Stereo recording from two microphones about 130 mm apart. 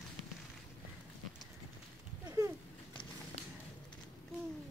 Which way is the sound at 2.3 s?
25° right (ahead or behind).